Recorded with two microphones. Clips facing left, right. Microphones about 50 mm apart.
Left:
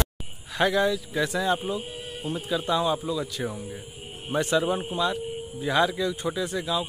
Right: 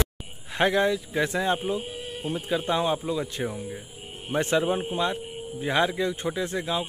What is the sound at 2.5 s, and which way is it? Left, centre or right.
A man's voice, right.